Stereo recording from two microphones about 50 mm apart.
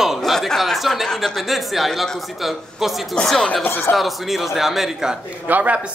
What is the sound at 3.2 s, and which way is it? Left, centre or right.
Speech, centre.